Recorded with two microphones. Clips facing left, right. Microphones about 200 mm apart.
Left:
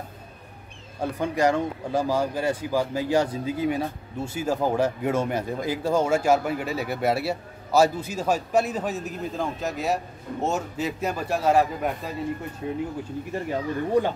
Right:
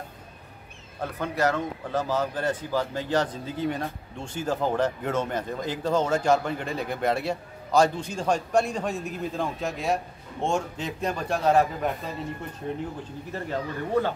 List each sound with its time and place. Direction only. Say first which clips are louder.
1.0 s speech: left 3 dB; 15° left (ahead or behind)